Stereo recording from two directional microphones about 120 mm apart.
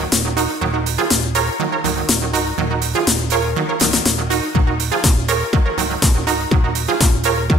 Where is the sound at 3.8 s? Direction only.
Centre (ahead or behind).